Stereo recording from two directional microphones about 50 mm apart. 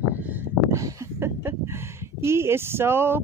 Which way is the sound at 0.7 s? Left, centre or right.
Right.